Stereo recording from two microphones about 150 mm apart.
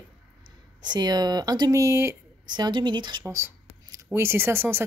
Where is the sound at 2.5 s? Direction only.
30° right (ahead or behind).